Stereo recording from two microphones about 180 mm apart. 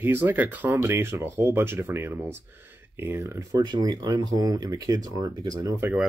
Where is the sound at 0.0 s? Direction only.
10° right (ahead or behind).